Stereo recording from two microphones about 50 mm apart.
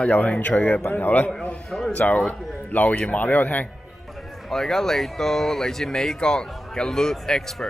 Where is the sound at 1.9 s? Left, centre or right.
Left.